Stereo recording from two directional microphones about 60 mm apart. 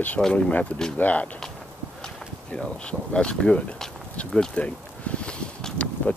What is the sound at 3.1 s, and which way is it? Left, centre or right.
Speech, centre.